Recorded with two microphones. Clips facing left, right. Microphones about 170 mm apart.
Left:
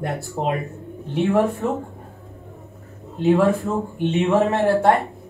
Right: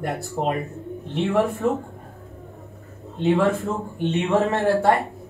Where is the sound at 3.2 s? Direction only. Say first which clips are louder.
Left 3 dB; centre (ahead or behind).